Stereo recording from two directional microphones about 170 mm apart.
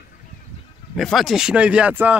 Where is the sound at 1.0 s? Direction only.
Centre (ahead or behind).